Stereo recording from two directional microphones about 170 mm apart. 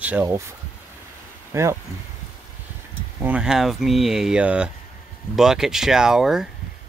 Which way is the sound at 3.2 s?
10° right (ahead or behind).